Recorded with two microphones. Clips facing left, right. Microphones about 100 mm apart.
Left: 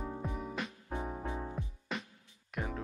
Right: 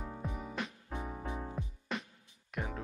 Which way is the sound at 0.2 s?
Centre (ahead or behind).